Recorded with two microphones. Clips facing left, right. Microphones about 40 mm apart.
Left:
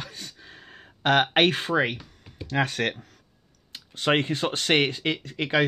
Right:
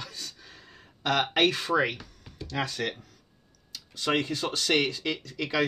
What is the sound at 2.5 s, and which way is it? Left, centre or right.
Speech, left.